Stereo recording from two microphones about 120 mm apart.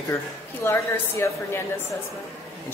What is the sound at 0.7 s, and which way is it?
Speech, 20° left (ahead or behind).